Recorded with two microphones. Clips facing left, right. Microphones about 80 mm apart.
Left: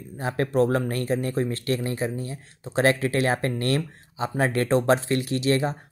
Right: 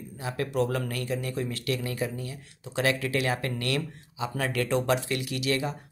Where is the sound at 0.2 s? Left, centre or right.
Left.